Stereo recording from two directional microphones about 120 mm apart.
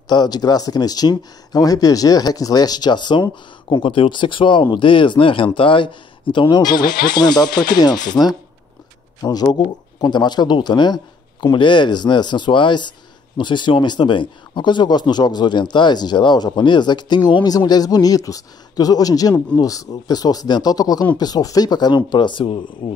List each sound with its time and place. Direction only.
0.1 s speech: 35° left (ahead or behind)